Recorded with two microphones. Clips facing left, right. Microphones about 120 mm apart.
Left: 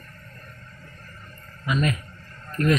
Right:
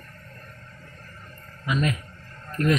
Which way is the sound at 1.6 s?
15° right (ahead or behind).